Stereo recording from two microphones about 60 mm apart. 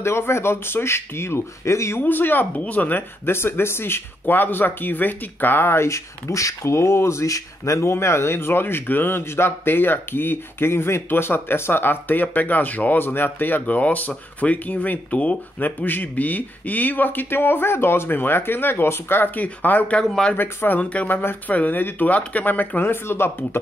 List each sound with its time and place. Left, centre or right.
0.0 s speech: left
2.0 s speech: left
3.3 s speech: left
19.3 s speech: left
20.1 s speech: centre
20.3 s speech: left
21.1 s speech: left
21.5 s speech: left